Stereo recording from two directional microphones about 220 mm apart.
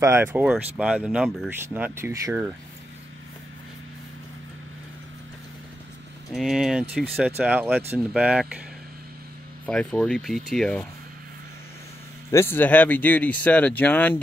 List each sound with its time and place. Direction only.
0.0 s speech: 10° right (ahead or behind)
6.3 s speech: centre (ahead or behind)
9.7 s speech: 5° left (ahead or behind)
12.3 s speech: 10° left (ahead or behind)